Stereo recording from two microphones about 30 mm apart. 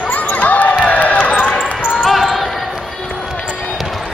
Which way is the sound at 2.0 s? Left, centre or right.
Centre.